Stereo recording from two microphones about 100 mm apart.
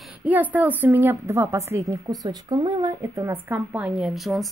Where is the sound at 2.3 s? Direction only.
45° right (ahead or behind); by 4.0 s 15° right (ahead or behind).